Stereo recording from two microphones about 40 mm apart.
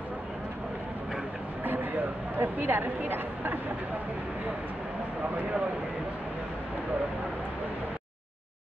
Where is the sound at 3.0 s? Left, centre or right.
Right.